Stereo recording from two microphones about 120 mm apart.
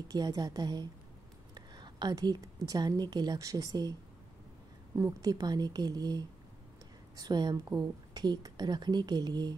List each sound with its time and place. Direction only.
0.1 s a woman's voice: 35° right (ahead or behind)
4.9 s a woman's voice: 25° right (ahead or behind)